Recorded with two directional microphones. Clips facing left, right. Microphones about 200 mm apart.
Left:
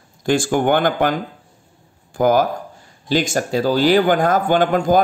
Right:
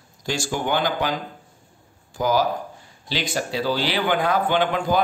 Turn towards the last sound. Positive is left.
turn(degrees=45)  # may be behind; listen again after turning